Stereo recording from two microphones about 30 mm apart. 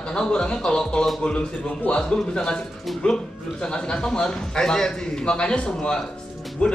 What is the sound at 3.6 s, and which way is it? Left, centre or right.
A man's voice, left.